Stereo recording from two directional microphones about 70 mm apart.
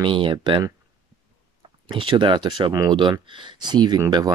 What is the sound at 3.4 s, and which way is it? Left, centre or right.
Speech, right.